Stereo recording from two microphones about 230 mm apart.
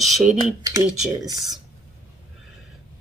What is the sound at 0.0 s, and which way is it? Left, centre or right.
Speech, centre.